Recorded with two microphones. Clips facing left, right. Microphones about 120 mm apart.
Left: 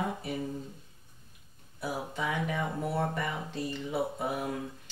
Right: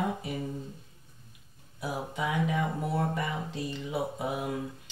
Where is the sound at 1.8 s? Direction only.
15° right (ahead or behind).